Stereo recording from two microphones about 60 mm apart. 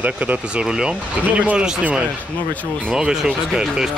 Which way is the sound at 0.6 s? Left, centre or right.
Centre.